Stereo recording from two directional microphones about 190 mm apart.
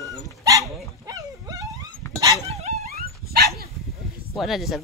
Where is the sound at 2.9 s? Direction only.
55° right (ahead or behind).